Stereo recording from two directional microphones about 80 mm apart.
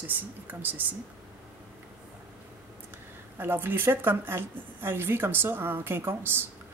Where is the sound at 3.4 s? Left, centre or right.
Right.